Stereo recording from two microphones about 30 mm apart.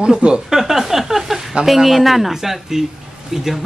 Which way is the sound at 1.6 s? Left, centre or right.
Centre.